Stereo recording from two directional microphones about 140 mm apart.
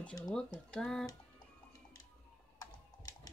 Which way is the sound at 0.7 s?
5° left (ahead or behind).